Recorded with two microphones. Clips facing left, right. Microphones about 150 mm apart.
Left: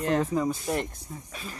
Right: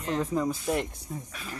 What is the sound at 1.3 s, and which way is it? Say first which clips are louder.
Speech: even; 30° left (ahead or behind).